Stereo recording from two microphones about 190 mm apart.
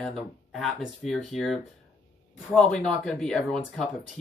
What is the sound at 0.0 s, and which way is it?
Speech, centre (ahead or behind).